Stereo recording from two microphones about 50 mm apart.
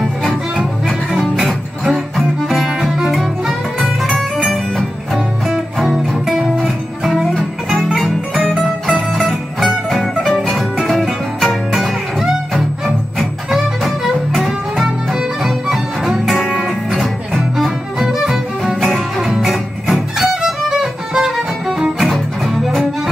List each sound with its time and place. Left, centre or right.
0.0 s music: centre
18.0 s music: centre
18.6 s music: centre